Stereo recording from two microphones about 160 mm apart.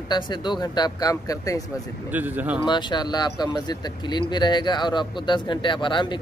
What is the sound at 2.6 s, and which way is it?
Speech, 30° left (ahead or behind).